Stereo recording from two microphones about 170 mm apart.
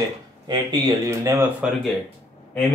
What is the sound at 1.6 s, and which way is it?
Speech, 5° right (ahead or behind).